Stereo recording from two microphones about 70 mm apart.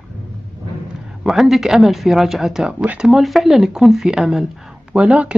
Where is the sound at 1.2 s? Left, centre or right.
Centre.